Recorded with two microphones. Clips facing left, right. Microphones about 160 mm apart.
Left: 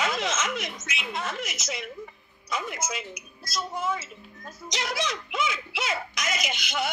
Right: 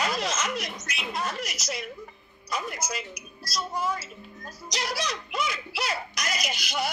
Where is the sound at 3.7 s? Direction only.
25° left (ahead or behind).